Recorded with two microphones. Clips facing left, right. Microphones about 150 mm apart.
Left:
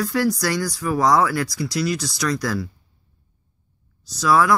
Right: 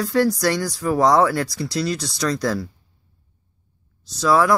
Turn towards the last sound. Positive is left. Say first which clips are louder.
# right 1 dB
turn(degrees=-25)  # may be behind; listen again after turning